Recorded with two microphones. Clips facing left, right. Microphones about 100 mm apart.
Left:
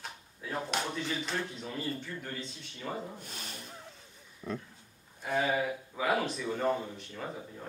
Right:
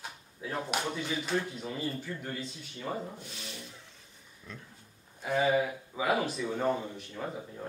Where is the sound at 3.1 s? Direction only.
45° left (ahead or behind).